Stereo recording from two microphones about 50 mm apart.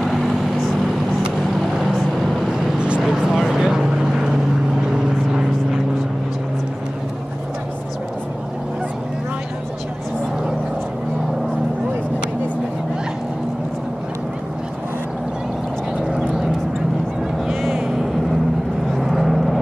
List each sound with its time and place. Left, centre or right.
2.5 s vehicle: right
3.0 s vehicle: centre
16.1 s vehicle: centre
17.6 s music: centre
18.9 s vehicle: centre